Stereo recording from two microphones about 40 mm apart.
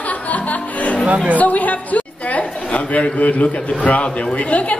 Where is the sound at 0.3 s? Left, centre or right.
Left.